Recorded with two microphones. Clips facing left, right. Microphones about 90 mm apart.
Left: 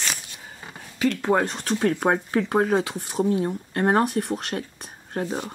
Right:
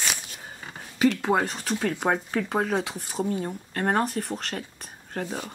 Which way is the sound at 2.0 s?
15° left (ahead or behind).